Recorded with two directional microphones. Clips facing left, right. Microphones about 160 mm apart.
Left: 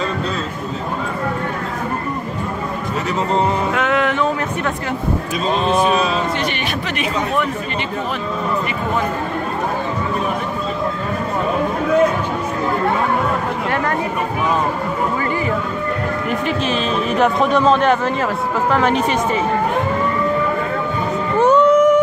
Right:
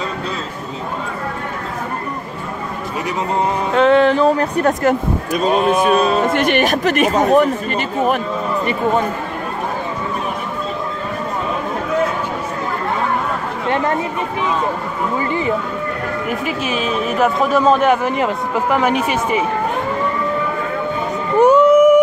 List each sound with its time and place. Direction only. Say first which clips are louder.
3.7 s speech: right 6 dB; 30° right (ahead or behind)
5.5 s a man's voice: right 1 dB; 10° right (ahead or behind)
5.9 s speech: right 3 dB; 45° right (ahead or behind)
13.7 s speech: right 4 dB; 20° right (ahead or behind)
16.3 s a man's voice: left 2 dB; 10° right (ahead or behind)
21.4 s a sound: right 3 dB; 10° right (ahead or behind)